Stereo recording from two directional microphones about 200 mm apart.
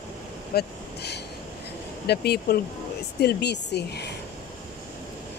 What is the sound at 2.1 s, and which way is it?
Speech, 50° left (ahead or behind).